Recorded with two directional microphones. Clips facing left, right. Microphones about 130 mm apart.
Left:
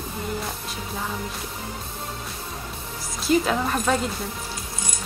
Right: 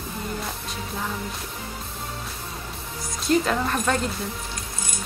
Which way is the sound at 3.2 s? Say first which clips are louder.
Left 1 dB; 5° left (ahead or behind).